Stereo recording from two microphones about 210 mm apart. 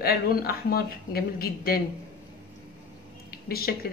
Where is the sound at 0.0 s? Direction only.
45° left (ahead or behind).